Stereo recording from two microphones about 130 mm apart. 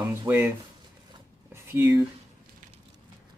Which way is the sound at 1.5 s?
20° right (ahead or behind).